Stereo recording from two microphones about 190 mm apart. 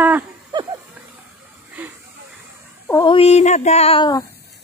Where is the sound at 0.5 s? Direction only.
25° right (ahead or behind).